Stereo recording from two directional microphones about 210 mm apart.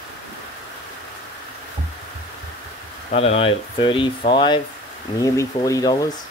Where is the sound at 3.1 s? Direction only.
30° left (ahead or behind).